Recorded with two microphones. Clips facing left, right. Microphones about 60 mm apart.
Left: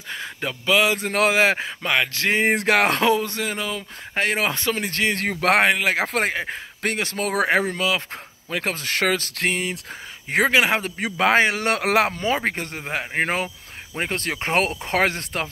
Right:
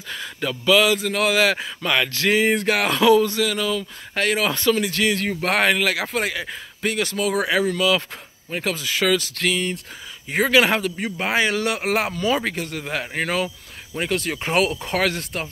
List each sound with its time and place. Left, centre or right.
0.1 s speech: left
0.9 s speech: left
1.3 s speech: left
2.4 s speech: left
5.2 s speech: left
5.6 s speech: left
6.8 s speech: left
7.2 s speech: left
10.5 s speech: centre
11.0 s speech: left
11.3 s speech: left
11.6 s speech: left
12.1 s speech: left
12.7 s speech: left